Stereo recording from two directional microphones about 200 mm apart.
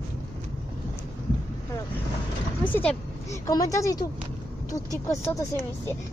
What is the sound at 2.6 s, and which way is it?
A woman's voice, 10° left (ahead or behind).